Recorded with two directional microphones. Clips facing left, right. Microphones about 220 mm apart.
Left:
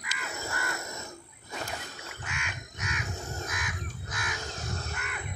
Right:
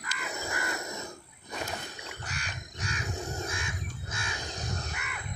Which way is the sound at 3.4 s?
25° right (ahead or behind).